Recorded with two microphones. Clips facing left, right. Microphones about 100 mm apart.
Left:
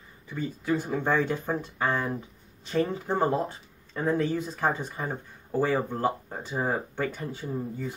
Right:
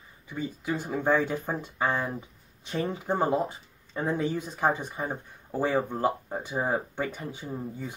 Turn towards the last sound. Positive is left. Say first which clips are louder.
# left 3 dB
turn(degrees=-10)  # may be behind; listen again after turning